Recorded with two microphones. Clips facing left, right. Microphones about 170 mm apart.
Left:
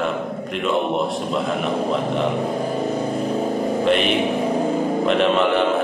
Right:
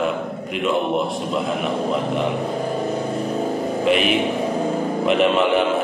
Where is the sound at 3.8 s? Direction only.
5° right (ahead or behind).